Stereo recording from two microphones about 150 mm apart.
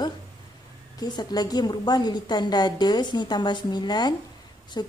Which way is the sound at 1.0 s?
25° left (ahead or behind).